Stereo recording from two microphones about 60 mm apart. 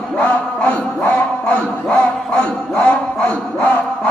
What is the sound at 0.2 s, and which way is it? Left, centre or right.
Speech, left.